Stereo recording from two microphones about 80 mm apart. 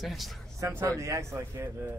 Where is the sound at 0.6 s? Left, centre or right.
Right.